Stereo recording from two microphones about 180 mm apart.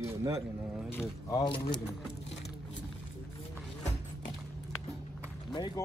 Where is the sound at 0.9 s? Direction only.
20° left (ahead or behind).